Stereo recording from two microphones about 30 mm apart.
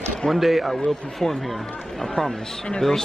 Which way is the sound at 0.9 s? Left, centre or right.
Centre.